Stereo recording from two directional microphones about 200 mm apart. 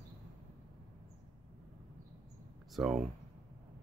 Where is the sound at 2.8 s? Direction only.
Centre (ahead or behind).